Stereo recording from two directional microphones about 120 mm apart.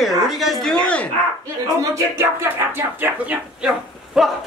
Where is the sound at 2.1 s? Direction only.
20° right (ahead or behind).